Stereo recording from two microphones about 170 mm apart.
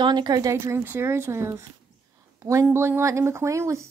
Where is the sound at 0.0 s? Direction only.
25° right (ahead or behind).